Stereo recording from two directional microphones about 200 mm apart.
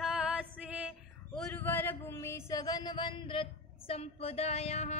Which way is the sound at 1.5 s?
10° left (ahead or behind).